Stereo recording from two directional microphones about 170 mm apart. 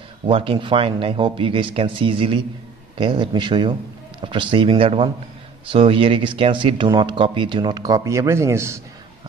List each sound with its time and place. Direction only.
0.3 s speech: 30° right (ahead or behind); by 8.8 s 15° right (ahead or behind)